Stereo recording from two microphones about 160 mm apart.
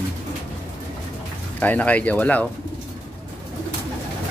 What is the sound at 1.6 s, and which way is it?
Speech, 10° left (ahead or behind).